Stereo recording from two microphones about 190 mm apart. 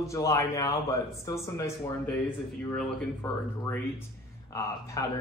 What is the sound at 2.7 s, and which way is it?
Speech, 5° left (ahead or behind).